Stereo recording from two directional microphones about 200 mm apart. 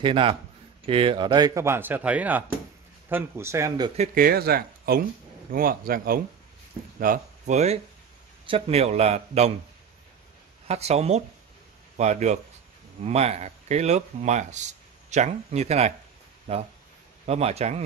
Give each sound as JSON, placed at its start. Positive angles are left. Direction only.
{"t": 0.0, "sound": "a man's voice", "side_deg": -25}
{"t": 4.1, "sound": "speech", "side_deg": -50}
{"t": 10.7, "sound": "a man's voice", "side_deg": -30}